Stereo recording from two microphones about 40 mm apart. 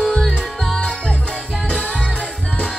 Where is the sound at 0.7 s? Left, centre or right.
Left.